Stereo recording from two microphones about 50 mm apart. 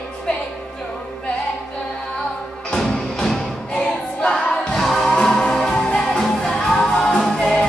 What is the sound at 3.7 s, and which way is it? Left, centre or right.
Choir, centre.